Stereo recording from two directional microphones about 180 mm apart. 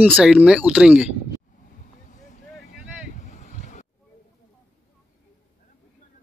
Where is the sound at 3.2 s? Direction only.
40° left (ahead or behind).